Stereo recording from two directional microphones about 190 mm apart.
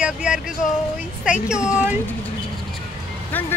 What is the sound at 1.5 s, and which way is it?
Speech, 5° right (ahead or behind).